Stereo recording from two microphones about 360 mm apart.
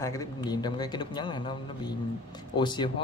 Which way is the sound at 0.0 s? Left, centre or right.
Centre.